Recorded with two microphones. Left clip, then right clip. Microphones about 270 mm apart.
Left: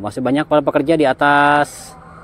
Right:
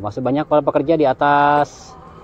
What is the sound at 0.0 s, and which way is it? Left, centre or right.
Speech, left.